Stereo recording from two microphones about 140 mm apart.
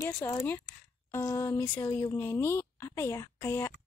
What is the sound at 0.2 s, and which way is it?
A woman's voice, 20° left (ahead or behind).